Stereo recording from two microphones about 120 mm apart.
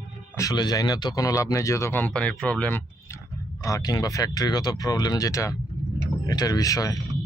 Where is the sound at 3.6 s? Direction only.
30° left (ahead or behind).